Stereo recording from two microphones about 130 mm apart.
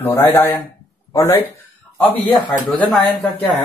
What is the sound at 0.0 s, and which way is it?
Speech, 15° left (ahead or behind).